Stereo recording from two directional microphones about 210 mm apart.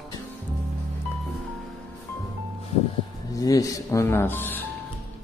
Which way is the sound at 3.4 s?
15° left (ahead or behind).